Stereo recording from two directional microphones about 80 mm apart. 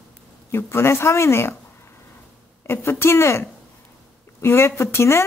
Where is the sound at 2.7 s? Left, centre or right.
Left.